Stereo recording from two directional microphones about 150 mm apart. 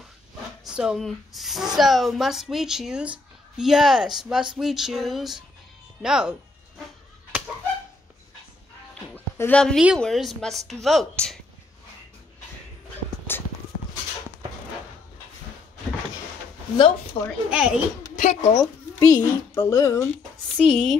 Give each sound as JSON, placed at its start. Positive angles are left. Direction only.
{"t": 0.7, "sound": "speech", "side_deg": -5}
{"t": 9.1, "sound": "a sound", "side_deg": 10}
{"t": 9.9, "sound": "speech", "side_deg": 0}
{"t": 13.3, "sound": "a sound", "side_deg": 15}
{"t": 16.7, "sound": "speech", "side_deg": 35}
{"t": 17.5, "sound": "a child's voice", "side_deg": -5}
{"t": 18.1, "sound": "a sound", "side_deg": 50}
{"t": 18.6, "sound": "a woman's voice", "side_deg": 25}
{"t": 20.5, "sound": "speech", "side_deg": 5}